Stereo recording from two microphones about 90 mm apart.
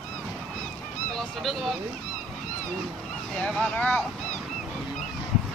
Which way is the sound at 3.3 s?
10° left (ahead or behind).